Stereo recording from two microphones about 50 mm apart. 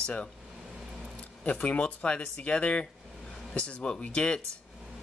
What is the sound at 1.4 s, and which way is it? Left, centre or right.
Speech, left.